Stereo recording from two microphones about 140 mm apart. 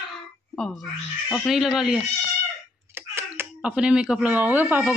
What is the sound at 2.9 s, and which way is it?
A woman's voice, 15° right (ahead or behind).